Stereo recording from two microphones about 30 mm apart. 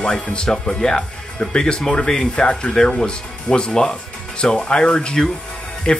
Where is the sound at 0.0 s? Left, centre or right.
Left.